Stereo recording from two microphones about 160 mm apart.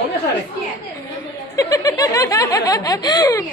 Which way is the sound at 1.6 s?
20° left (ahead or behind).